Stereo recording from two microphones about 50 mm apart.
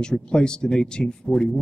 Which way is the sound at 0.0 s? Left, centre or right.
Centre.